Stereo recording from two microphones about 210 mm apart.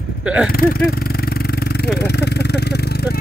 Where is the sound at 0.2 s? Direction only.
5° right (ahead or behind).